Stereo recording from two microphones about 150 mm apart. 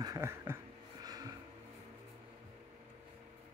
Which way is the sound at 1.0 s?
25° right (ahead or behind).